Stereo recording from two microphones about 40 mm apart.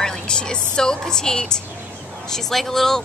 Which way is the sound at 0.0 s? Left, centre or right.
Centre.